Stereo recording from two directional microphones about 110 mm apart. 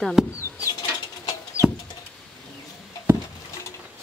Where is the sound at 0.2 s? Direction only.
5° right (ahead or behind).